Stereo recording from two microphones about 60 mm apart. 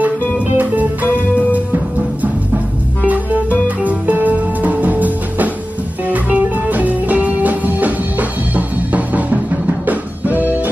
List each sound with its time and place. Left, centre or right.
3.6 s music: right